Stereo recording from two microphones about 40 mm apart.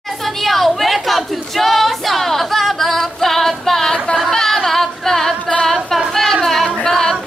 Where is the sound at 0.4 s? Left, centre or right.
Centre.